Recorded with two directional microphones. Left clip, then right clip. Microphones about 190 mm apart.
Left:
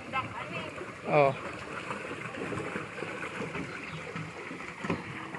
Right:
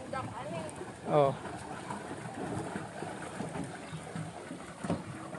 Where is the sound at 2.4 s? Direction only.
50° right (ahead or behind).